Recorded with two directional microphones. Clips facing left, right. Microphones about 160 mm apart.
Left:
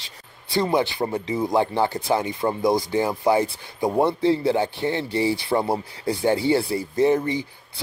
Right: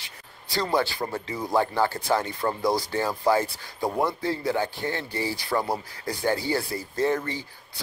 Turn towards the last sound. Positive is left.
turn(degrees=20)  # may be behind; listen again after turning